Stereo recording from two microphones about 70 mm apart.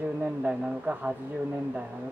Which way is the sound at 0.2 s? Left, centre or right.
Centre.